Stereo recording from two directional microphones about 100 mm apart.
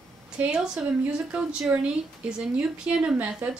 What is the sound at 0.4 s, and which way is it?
Speech, 10° right (ahead or behind).